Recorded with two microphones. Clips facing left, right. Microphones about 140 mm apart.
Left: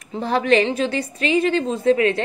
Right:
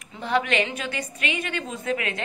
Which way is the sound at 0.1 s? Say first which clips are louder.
Left 7 dB; 35° left (ahead or behind).